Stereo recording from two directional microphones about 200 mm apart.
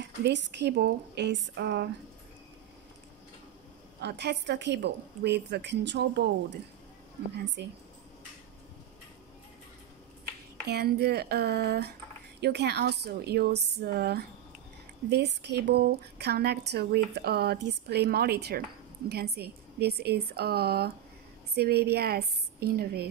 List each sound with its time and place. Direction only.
0.0 s a woman's voice: 60° right (ahead or behind)
4.0 s a woman's voice: 60° right (ahead or behind)
7.3 s a woman's voice: 60° right (ahead or behind)
10.7 s a woman's voice: 50° right (ahead or behind)